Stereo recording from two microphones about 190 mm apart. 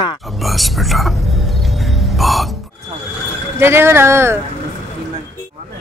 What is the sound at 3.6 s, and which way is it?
Speech, 10° right (ahead or behind).